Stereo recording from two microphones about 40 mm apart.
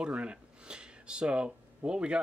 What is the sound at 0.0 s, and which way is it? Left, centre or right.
Speech, right.